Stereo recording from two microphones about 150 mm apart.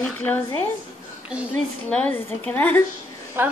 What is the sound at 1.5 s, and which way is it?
A woman's voice, 10° left (ahead or behind).